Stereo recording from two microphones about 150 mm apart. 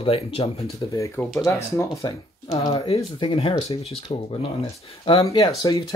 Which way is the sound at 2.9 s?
40° left (ahead or behind).